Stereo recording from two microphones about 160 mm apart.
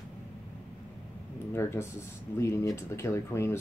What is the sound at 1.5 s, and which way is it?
Speech, 15° left (ahead or behind).